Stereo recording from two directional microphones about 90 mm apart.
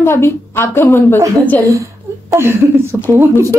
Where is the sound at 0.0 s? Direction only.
25° left (ahead or behind).